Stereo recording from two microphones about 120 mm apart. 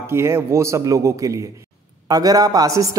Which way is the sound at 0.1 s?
20° right (ahead or behind).